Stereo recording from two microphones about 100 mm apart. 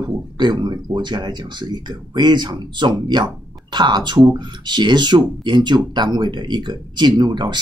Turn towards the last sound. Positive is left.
turn(degrees=-50)  # may be behind; listen again after turning